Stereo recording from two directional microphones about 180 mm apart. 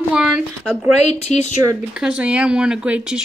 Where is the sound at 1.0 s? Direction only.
40° left (ahead or behind).